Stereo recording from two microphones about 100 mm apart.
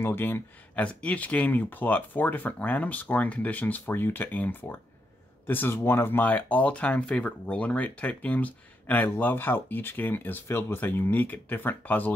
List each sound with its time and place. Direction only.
0.0 s speech: 20° left (ahead or behind)